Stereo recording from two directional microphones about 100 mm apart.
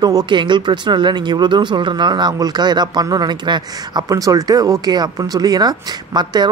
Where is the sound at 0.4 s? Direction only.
50° right (ahead or behind).